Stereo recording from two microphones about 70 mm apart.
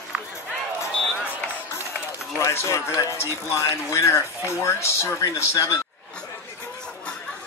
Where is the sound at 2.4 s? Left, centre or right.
Left.